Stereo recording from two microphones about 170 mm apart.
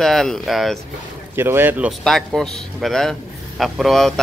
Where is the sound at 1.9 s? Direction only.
Centre (ahead or behind).